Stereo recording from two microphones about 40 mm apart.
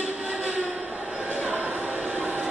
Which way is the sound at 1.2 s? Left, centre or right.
Right.